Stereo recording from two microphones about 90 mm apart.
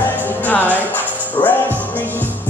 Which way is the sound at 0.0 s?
20° left (ahead or behind).